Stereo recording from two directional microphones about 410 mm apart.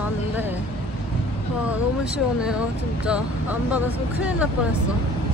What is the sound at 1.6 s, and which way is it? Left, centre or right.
Speech, centre.